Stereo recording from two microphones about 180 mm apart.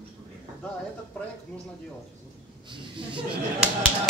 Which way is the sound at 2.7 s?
30° right (ahead or behind).